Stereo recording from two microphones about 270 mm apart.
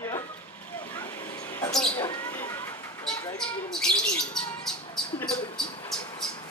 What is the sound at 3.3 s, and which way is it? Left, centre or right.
Speech, centre.